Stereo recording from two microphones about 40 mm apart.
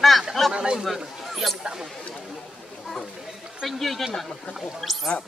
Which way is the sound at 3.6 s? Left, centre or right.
Centre.